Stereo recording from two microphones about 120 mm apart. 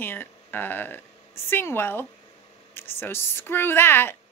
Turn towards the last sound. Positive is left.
turn(degrees=20)  # may be behind; listen again after turning